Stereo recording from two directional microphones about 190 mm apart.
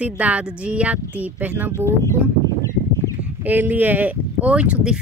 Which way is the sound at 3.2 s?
10° right (ahead or behind).